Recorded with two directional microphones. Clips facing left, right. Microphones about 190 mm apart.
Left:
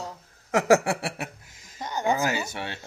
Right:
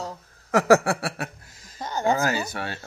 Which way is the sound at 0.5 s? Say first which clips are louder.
Right 2 dB; 15° left (ahead or behind).